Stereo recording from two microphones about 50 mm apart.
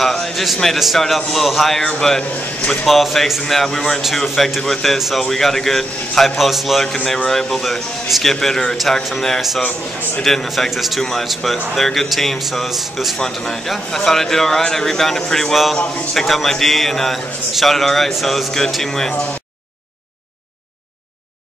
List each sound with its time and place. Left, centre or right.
0.0 s a man's voice: centre
4.9 s a man's voice: centre
5.2 s a man's voice: centre
9.6 s a man's voice: left
10.2 s a man's voice: centre